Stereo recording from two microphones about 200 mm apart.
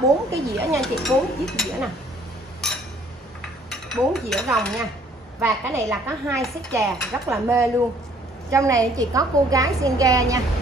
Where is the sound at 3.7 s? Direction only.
Centre (ahead or behind).